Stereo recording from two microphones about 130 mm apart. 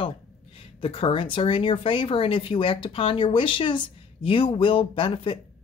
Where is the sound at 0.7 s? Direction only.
45° left (ahead or behind).